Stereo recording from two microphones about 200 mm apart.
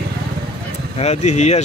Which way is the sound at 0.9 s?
35° left (ahead or behind).